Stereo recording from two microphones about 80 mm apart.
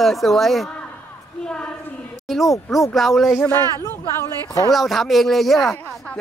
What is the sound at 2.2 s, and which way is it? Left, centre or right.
Speech, centre.